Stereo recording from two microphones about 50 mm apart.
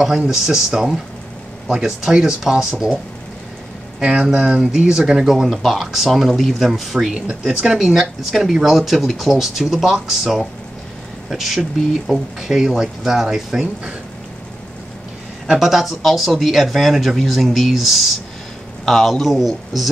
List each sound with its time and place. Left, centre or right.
0.0 s speech: centre
4.0 s speech: centre
15.4 s speech: centre
15.7 s speech: centre